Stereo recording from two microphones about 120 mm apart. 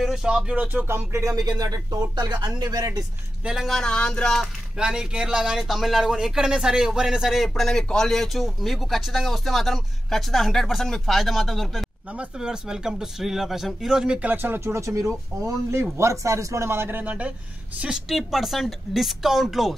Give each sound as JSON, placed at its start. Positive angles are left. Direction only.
{"t": 0.0, "sound": "speech", "side_deg": -5}
{"t": 3.4, "sound": "a man's voice", "side_deg": 0}
{"t": 4.7, "sound": "a man's voice", "side_deg": -5}